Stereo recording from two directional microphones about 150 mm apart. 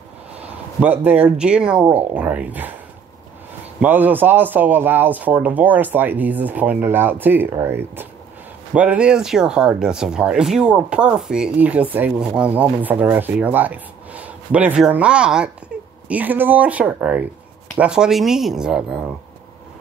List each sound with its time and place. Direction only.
0.3 s speech: 10° right (ahead or behind)
3.8 s speech: 10° right (ahead or behind)